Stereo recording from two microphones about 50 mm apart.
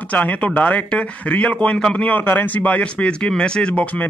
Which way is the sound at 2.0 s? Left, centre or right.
Left.